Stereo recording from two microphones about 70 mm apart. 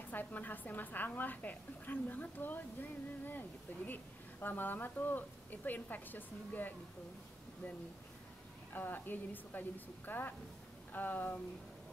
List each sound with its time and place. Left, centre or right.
0.1 s a woman's voice: left
8.7 s a woman's voice: left